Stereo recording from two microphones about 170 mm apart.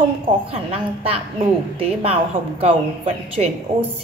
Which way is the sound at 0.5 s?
35° right (ahead or behind).